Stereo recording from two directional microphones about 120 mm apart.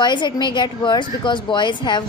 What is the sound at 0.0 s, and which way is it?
A woman's voice, 40° left (ahead or behind).